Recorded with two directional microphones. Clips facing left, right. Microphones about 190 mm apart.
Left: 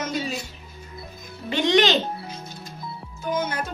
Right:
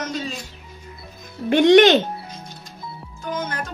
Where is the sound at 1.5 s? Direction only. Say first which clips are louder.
Right 8 dB; 55° right (ahead or behind).